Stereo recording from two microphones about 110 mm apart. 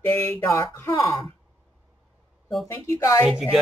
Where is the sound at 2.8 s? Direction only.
25° left (ahead or behind).